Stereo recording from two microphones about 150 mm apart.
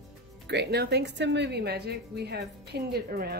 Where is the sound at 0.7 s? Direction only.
90° right.